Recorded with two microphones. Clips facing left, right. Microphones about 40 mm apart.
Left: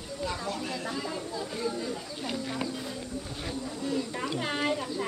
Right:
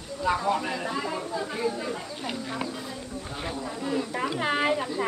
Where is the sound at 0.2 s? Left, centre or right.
Right.